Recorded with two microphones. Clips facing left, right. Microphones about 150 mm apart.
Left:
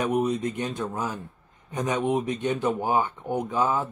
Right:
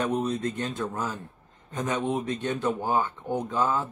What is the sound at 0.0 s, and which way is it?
Speech, 15° left (ahead or behind).